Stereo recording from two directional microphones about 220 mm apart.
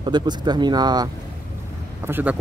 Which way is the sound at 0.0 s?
20° right (ahead or behind).